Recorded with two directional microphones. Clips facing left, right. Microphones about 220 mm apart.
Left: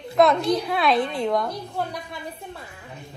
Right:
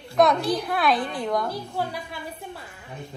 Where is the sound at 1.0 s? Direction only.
25° left (ahead or behind).